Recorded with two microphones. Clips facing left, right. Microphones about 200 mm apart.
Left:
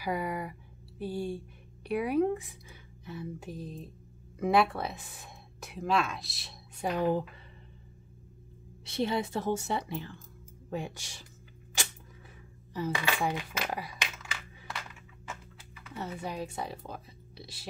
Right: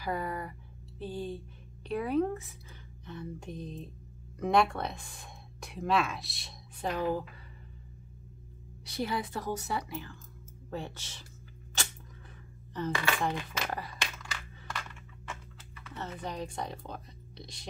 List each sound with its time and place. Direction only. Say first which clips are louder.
0.0 s a woman's voice: left 2 dB; 10° left (ahead or behind)
3.1 s music: left 1 dB; 5° left (ahead or behind)
4.4 s speech: left 1 dB; 5° left (ahead or behind)
8.8 s a woman's voice: left 3 dB; 25° left (ahead or behind)
10.7 s a woman's voice: left 2 dB; 15° left (ahead or behind)
12.7 s coin: even; 10° left (ahead or behind)